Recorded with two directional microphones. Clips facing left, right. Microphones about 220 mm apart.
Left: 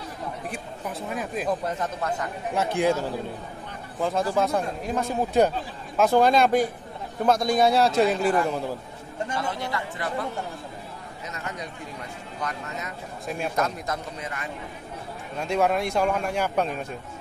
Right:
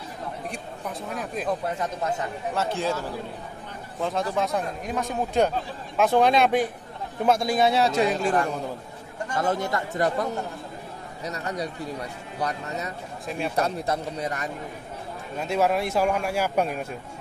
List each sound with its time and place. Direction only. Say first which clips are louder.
0.5 s speech: even; 5° left (ahead or behind)
1.8 s a man's voice: right 1 dB; 20° right (ahead or behind)
2.5 s speech: left 5 dB; 15° left (ahead or behind)
4.0 s speech: left 2 dB; centre (ahead or behind)
9.3 s speech: right 6 dB; 45° right (ahead or behind)
11.2 s speech: right 6 dB; 35° right (ahead or behind)
15.3 s a man's voice: even; 5° right (ahead or behind)